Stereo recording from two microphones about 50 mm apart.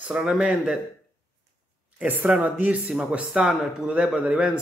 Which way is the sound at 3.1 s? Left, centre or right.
Right.